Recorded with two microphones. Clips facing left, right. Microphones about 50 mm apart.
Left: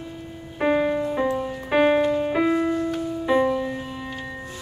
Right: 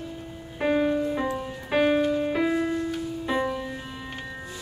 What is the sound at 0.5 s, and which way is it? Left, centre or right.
Music, centre.